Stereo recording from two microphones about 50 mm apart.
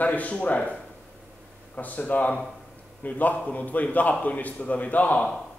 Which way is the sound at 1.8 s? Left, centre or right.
Left.